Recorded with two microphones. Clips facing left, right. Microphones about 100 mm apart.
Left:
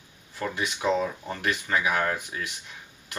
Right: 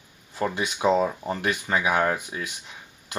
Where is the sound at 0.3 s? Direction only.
25° right (ahead or behind).